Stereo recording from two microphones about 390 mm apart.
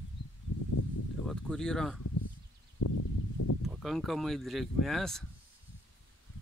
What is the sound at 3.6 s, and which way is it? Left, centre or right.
Speech, centre.